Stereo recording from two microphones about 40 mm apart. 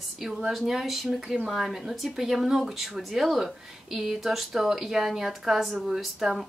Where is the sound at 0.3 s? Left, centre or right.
Centre.